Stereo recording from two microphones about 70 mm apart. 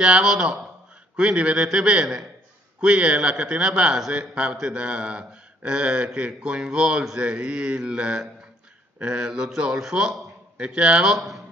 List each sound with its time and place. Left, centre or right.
0.0 s a man's voice: centre
1.6 s speech: centre
2.8 s a man's voice: centre
11.1 s speech: centre